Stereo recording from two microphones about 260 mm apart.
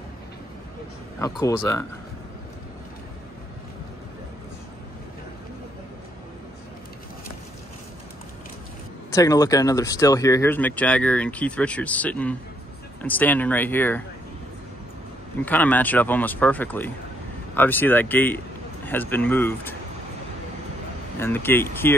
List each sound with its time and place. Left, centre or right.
1.2 s speech: centre
9.1 s speech: centre
15.4 s speech: centre
21.2 s speech: centre